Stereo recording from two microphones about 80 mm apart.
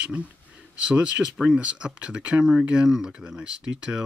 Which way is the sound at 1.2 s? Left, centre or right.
Centre.